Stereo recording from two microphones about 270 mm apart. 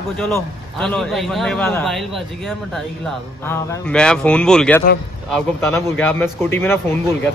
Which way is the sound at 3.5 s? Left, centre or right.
Centre.